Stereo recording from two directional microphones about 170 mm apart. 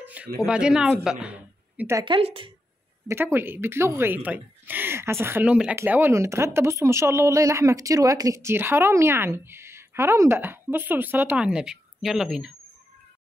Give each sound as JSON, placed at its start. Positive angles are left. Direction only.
{"t": 0.0, "sound": "a sound", "side_deg": -10}
{"t": 0.5, "sound": "speech", "side_deg": -5}
{"t": 2.0, "sound": "a woman's voice", "side_deg": -30}
{"t": 3.1, "sound": "speech", "side_deg": -15}